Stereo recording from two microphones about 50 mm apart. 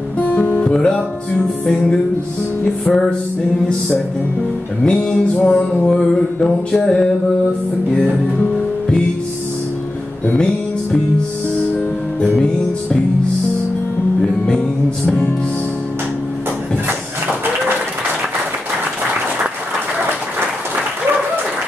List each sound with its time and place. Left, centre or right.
0.2 s music: left
0.7 s music: centre
2.8 s music: centre
4.8 s music: centre
10.2 s music: centre
14.2 s music: centre